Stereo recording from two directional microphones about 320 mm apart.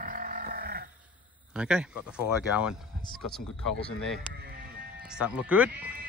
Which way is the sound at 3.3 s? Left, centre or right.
Centre.